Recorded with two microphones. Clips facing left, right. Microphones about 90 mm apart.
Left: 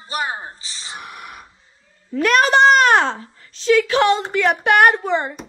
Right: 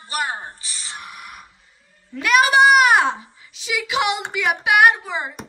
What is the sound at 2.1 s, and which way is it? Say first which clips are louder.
A child's voice: left 1 dB; 5° right (ahead or behind).